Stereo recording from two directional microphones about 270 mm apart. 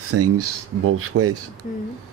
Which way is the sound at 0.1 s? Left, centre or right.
Right.